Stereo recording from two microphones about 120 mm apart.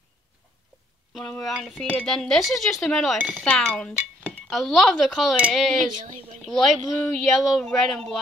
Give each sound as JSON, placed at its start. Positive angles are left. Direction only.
{"t": 1.4, "sound": "speech", "side_deg": 5}
{"t": 3.2, "sound": "speech", "side_deg": -15}
{"t": 3.4, "sound": "speech", "side_deg": 5}